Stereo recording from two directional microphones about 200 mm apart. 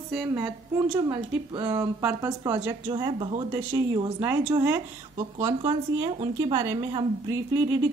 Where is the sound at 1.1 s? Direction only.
30° right (ahead or behind).